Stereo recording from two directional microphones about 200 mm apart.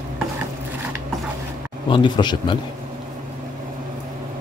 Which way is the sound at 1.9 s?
25° left (ahead or behind).